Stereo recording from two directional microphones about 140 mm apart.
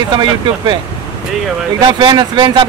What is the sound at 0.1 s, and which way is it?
Speech, 30° right (ahead or behind).